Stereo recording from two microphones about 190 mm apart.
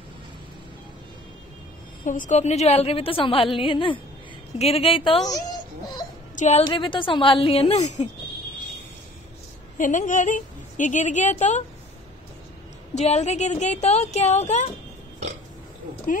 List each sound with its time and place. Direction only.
2.0 s a woman's voice: 40° left (ahead or behind); by 5.4 s 25° left (ahead or behind)
6.3 s a woman's voice: 40° left (ahead or behind)
6.6 s a woman's voice: 25° left (ahead or behind)
9.8 s a woman's voice: 40° left (ahead or behind)
12.9 s a woman's voice: 35° left (ahead or behind)